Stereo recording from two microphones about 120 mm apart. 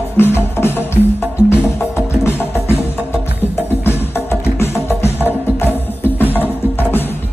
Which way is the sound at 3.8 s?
20° left (ahead or behind).